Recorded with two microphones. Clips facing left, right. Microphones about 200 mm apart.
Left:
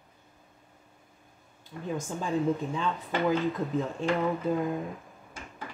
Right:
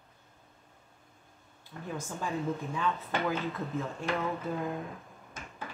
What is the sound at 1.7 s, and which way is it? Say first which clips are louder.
Speech: left 5 dB; 10° left (ahead or behind).